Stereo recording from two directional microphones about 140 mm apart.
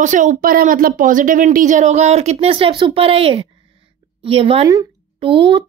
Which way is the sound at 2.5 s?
40° right (ahead or behind).